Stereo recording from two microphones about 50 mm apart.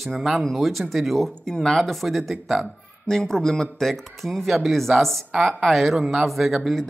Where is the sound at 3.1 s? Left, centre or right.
Centre.